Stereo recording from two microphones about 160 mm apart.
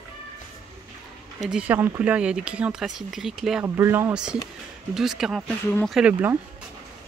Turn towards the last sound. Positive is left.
turn(degrees=-10)  # may be behind; listen again after turning